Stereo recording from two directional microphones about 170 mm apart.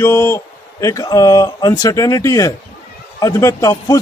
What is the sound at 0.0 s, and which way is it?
Speech, 15° left (ahead or behind).